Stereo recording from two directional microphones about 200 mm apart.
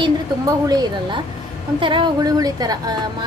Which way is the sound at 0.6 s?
20° right (ahead or behind).